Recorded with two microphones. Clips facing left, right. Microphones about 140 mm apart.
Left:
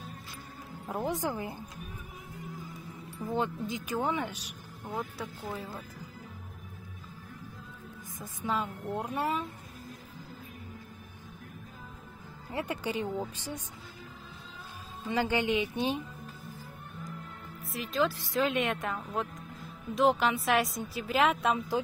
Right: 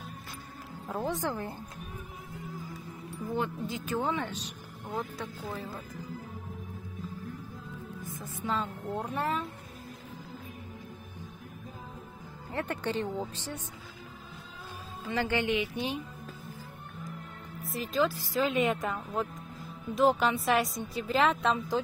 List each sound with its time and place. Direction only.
0.8 s speech: 15° left (ahead or behind)
3.3 s a woman's voice: 20° left (ahead or behind)
8.2 s speech: 15° left (ahead or behind)
12.4 s speech: 10° left (ahead or behind)
15.0 s speech: 15° left (ahead or behind)
17.6 s a woman's voice: centre (ahead or behind)